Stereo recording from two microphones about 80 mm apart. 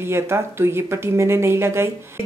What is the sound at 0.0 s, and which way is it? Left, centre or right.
Speech, right.